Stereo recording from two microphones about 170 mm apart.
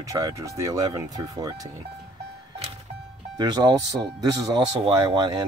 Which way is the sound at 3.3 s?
25° right (ahead or behind).